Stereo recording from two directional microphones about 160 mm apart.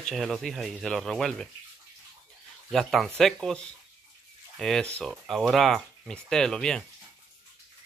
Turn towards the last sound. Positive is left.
turn(degrees=5)  # may be behind; listen again after turning